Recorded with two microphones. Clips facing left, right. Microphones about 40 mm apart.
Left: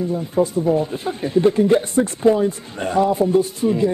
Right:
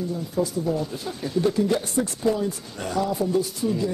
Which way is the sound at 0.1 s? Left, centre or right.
Left.